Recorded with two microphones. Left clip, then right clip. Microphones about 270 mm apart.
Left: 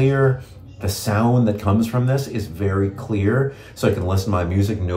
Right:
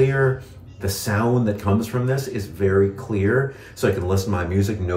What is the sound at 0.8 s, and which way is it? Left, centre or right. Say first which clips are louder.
Speech: left 1 dB; centre.